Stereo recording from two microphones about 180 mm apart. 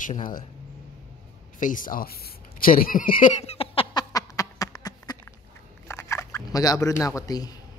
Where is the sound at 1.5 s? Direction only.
45° left (ahead or behind); by 4.0 s 30° left (ahead or behind).